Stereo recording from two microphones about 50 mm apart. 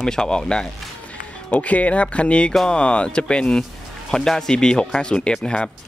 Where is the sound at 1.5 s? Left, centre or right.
Left.